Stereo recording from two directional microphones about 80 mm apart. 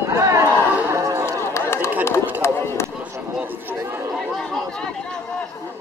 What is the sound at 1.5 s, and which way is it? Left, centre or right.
Chatter, left.